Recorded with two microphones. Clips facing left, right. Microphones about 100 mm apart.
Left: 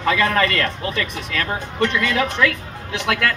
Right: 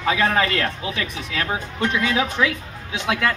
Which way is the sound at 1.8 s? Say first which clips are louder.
Left 2 dB; 75° left (ahead or behind).